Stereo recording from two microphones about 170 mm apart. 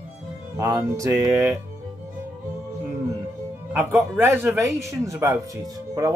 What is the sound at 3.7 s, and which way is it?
Speech, 10° right (ahead or behind).